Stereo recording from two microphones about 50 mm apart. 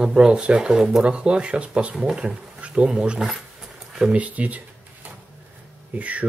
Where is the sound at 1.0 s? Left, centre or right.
Right.